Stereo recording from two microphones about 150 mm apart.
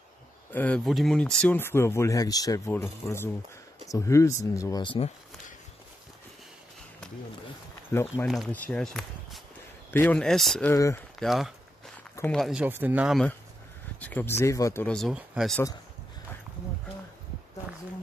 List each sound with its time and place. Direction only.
0.5 s speech: 10° left (ahead or behind)
4.8 s speech: 40° left (ahead or behind)
7.9 s speech: 15° left (ahead or behind)
10.7 s speech: 20° left (ahead or behind)
11.1 s a sound: centre (ahead or behind)
12.3 s speech: centre (ahead or behind)
13.9 s speech: 10° left (ahead or behind)
14.9 s speech: 5° left (ahead or behind)